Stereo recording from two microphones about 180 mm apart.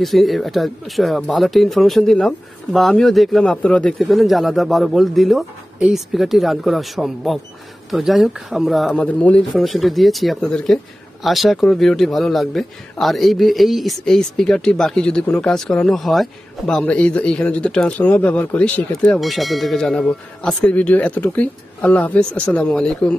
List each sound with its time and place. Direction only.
0.0 s speech: centre (ahead or behind)